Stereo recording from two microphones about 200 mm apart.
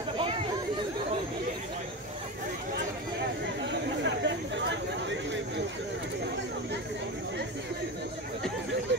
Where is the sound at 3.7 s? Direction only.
60° right (ahead or behind).